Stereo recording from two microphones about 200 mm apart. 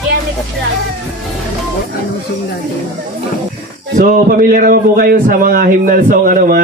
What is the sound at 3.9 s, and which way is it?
A man's voice, 45° right (ahead or behind).